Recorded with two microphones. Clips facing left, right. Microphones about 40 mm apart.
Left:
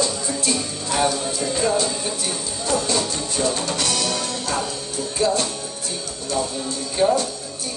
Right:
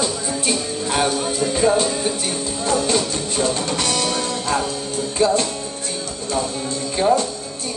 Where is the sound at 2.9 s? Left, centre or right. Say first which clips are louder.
Right 3 dB; right.